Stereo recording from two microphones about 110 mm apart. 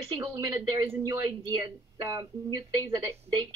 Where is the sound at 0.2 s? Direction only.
35° right (ahead or behind).